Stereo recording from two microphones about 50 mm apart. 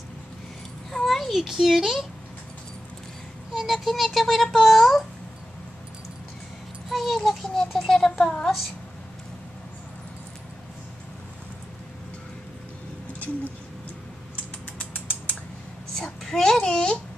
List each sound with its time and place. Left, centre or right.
0.9 s a child's voice: centre
3.5 s speech: centre
6.9 s speech: centre
14.3 s creak: left
15.9 s babbling: centre